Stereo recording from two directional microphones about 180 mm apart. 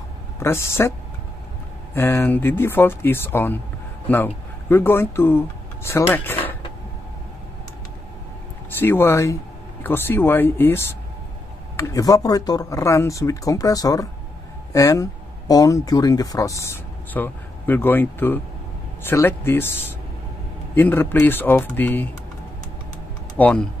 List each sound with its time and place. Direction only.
0.4 s speech: 15° left (ahead or behind)
2.0 s speech: 10° left (ahead or behind)
8.7 s speech: 10° left (ahead or behind)
20.7 s speech: 10° left (ahead or behind)
23.3 s speech: 5° left (ahead or behind)